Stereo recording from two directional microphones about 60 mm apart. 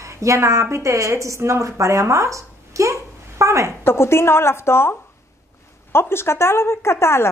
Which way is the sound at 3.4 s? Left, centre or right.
Right.